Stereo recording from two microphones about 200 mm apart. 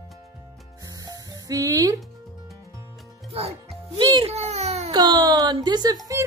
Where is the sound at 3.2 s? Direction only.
30° right (ahead or behind).